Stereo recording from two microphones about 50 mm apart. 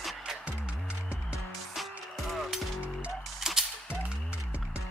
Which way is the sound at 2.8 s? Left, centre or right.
Right.